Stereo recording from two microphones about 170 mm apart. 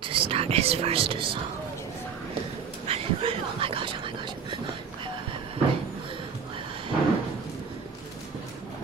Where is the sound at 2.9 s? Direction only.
35° right (ahead or behind).